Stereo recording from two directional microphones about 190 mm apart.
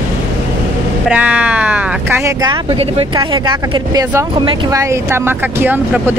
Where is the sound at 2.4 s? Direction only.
25° right (ahead or behind).